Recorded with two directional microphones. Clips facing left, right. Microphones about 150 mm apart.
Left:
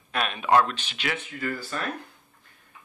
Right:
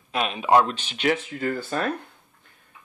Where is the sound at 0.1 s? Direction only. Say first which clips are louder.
Right 2 dB; 20° right (ahead or behind).